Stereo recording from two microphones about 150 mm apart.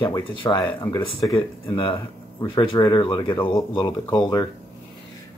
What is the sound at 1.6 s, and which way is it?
Speech, 35° left (ahead or behind).